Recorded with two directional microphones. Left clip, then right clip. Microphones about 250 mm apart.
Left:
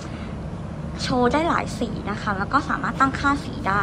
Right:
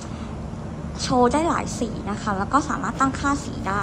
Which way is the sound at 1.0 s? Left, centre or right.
Centre.